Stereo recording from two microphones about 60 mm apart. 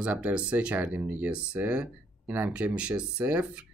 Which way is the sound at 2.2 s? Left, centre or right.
Right.